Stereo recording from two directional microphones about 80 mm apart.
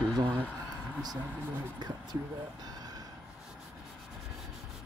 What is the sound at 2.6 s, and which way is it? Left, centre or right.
Vehicle, right.